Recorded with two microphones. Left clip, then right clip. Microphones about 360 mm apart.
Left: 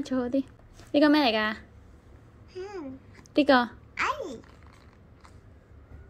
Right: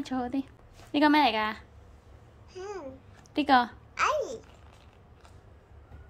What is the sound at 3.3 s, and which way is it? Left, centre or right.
Speech, centre.